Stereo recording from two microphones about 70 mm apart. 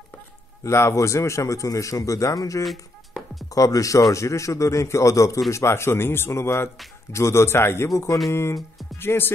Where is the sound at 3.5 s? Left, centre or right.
Left.